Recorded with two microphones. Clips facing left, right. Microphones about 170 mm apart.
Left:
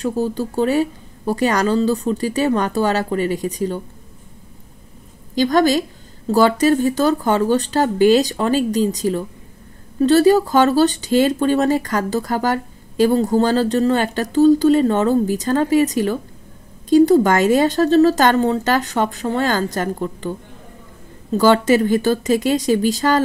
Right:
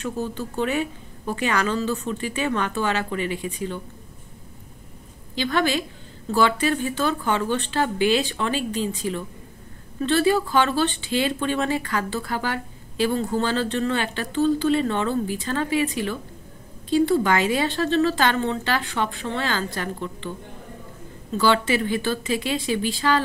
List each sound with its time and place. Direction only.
0.0 s speech: 35° left (ahead or behind)
5.3 s speech: 40° left (ahead or behind)